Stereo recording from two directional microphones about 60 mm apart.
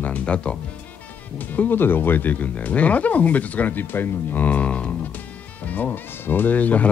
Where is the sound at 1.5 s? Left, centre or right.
Left.